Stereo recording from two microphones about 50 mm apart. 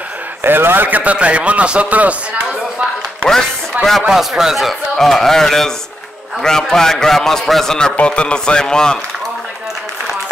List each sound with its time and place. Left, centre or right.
0.4 s a man's voice: right
1.1 s a man's voice: right
3.8 s speech: right
4.1 s a man's voice: centre
7.9 s a man's voice: left